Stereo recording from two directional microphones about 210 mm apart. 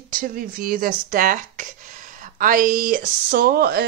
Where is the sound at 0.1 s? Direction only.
40° right (ahead or behind).